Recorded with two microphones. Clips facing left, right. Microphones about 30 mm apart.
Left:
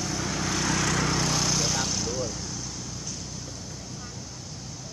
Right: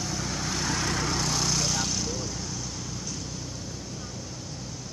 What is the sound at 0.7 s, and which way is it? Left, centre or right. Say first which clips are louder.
Vehicle: left 2 dB; left.